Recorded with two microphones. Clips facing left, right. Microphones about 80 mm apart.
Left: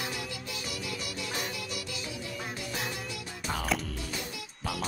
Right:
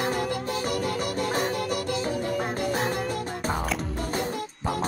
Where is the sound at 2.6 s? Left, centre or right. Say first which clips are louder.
Right 9 dB; right.